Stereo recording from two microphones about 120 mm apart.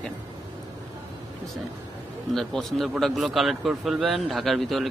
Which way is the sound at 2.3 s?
Centre (ahead or behind).